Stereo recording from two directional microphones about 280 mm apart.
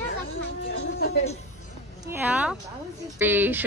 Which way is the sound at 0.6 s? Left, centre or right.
Left.